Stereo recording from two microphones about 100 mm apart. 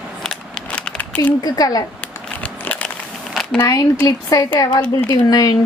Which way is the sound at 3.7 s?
35° left (ahead or behind).